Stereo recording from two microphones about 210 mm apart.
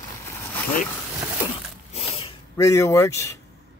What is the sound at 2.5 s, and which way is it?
Speech, 15° left (ahead or behind).